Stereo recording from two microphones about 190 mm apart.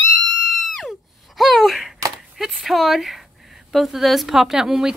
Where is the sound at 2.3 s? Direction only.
Centre (ahead or behind).